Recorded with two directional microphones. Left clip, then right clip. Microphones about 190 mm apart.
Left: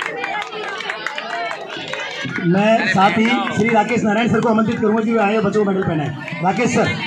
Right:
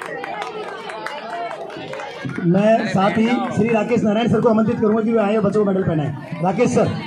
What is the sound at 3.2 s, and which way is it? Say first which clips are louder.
Speech: left 2 dB; 35° right (ahead or behind).